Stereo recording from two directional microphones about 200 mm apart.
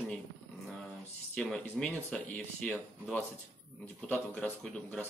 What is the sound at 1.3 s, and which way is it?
Speech, 5° left (ahead or behind).